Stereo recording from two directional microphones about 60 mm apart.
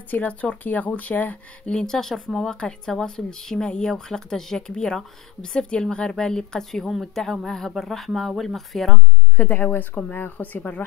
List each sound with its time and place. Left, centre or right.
0.1 s speech: left
1.7 s speech: centre
9.4 s speech: left